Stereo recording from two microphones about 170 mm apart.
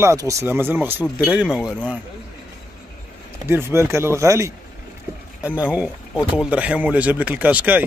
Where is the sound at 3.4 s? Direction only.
15° right (ahead or behind).